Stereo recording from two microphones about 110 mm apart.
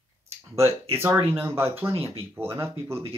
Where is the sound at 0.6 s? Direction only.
25° right (ahead or behind).